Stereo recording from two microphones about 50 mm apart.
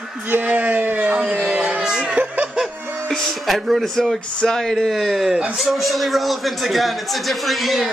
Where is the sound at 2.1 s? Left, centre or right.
Right.